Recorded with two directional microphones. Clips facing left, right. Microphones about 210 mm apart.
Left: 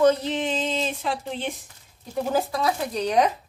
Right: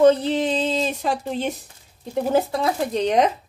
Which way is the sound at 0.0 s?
30° right (ahead or behind).